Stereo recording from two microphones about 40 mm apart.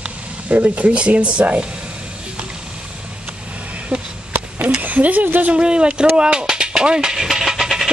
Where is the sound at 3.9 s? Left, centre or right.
Right.